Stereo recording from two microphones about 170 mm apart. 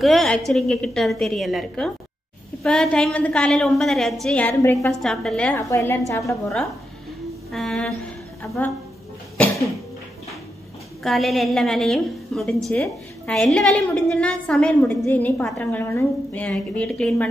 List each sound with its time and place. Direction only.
0.0 s a woman's voice: centre (ahead or behind)
5.6 s a woman's voice: 20° left (ahead or behind)
7.5 s a woman's voice: 5° left (ahead or behind)
11.0 s a woman's voice: centre (ahead or behind)